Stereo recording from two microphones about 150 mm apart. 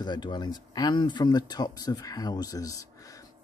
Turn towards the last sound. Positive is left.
turn(degrees=25)  # may be behind; listen again after turning